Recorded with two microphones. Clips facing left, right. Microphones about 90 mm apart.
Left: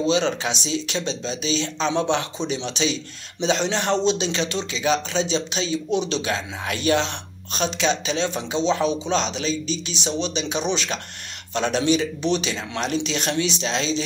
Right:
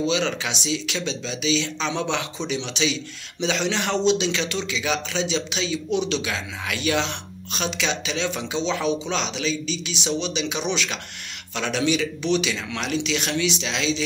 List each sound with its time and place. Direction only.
0.0 s speech: 35° left (ahead or behind)